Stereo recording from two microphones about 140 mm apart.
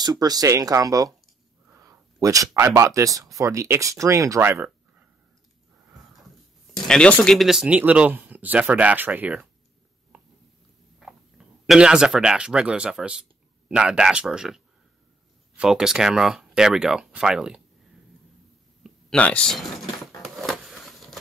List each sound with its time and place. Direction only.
0.0 s speech: 30° right (ahead or behind)
6.9 s speech: 10° left (ahead or behind); by 9.5 s 10° right (ahead or behind)
11.0 s speech: 5° right (ahead or behind)
18.8 s a sound: 5° left (ahead or behind)